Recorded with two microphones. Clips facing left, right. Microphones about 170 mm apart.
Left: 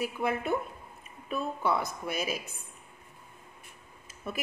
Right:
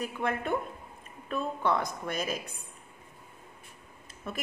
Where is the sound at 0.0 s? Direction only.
5° left (ahead or behind).